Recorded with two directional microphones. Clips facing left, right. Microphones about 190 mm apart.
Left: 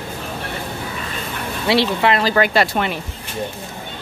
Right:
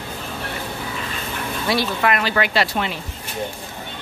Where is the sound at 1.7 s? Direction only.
25° left (ahead or behind); by 2.9 s 50° left (ahead or behind).